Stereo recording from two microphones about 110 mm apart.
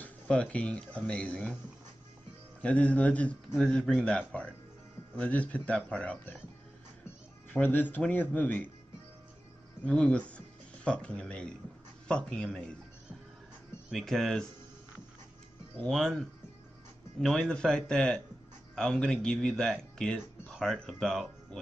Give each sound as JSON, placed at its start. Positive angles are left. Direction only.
{"t": 0.0, "sound": "speech", "side_deg": 10}
{"t": 2.6, "sound": "speech", "side_deg": 10}
{"t": 7.4, "sound": "speech", "side_deg": 15}
{"t": 9.8, "sound": "speech", "side_deg": 10}
{"t": 13.8, "sound": "a man's voice", "side_deg": 0}
{"t": 17.2, "sound": "a man's voice", "side_deg": 5}